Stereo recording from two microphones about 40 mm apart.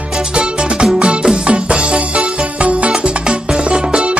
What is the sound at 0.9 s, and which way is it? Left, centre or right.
Music, right.